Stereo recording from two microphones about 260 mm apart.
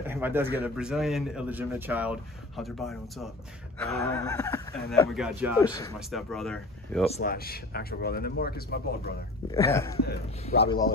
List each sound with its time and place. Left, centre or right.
0.0 s a sound: centre
0.7 s speech: centre
3.7 s a sound: centre
4.0 s speech: centre
5.1 s speech: centre
5.6 s speech: centre
5.9 s speech: centre
7.2 s speech: left
9.5 s speech: centre